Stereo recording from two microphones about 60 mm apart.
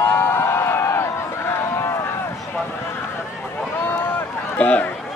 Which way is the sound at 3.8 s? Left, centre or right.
Left.